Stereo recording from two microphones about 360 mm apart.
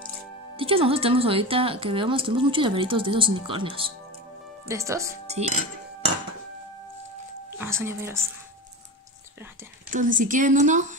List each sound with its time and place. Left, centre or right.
0.6 s speech: centre
7.5 s speech: centre
9.8 s a woman's voice: right